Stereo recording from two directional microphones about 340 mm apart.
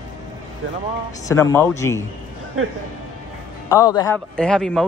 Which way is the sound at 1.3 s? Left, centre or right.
Centre.